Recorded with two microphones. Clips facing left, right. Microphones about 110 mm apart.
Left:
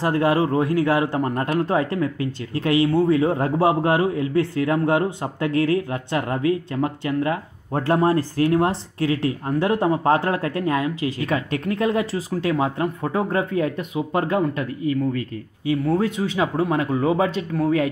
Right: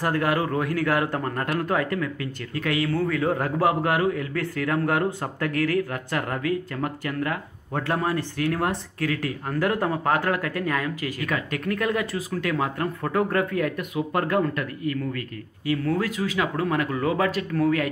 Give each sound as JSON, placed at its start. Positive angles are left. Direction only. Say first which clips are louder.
{"t": 0.0, "sound": "speech", "louder": "left 4 dB", "side_deg": 20}